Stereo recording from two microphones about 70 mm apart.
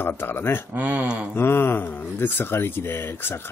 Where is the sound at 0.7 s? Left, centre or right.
Centre.